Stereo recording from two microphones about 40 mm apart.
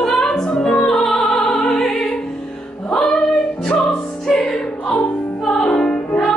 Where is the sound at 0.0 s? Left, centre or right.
Centre.